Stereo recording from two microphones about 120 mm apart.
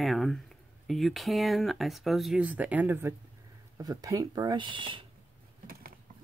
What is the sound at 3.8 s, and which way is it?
Speech, 30° right (ahead or behind).